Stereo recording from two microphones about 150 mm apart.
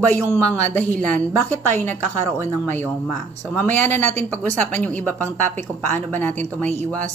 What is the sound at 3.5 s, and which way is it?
Speech, 10° left (ahead or behind).